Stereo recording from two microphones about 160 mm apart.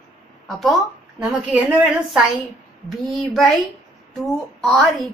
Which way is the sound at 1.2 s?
5° right (ahead or behind).